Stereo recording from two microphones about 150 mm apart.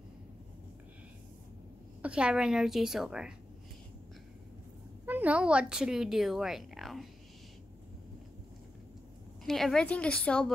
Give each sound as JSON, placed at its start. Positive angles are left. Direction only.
{"t": 2.0, "sound": "a woman's voice", "side_deg": -5}
{"t": 5.0, "sound": "speech", "side_deg": -10}
{"t": 9.4, "sound": "a woman's voice", "side_deg": 0}